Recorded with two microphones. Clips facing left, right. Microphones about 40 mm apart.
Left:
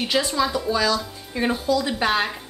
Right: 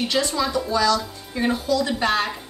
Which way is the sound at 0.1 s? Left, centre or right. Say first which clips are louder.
Left 3 dB; centre.